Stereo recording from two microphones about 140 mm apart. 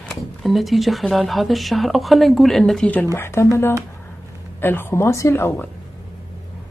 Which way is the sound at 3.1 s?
20° left (ahead or behind).